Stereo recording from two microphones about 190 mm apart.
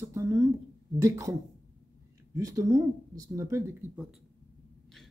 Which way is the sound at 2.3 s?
15° right (ahead or behind).